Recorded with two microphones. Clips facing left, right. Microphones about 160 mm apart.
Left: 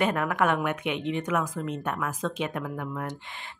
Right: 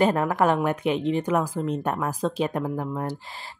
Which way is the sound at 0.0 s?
30° right (ahead or behind).